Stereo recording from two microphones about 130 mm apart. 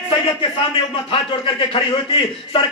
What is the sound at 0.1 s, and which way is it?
A man's voice, 40° left (ahead or behind).